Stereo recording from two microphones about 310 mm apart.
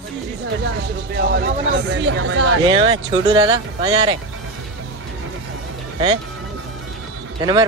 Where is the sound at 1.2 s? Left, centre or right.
Right.